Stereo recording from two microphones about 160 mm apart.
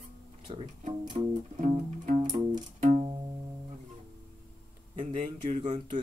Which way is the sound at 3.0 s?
30° right (ahead or behind).